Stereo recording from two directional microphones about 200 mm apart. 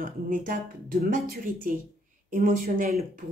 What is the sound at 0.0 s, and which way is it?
Speech, 45° right (ahead or behind).